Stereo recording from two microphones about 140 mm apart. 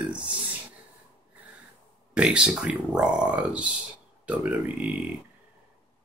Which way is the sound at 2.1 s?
5° right (ahead or behind).